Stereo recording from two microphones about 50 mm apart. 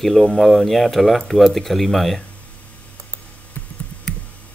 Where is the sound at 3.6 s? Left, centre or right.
Left.